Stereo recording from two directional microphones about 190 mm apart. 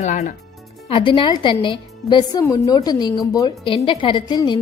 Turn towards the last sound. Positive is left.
turn(degrees=25)  # may be behind; listen again after turning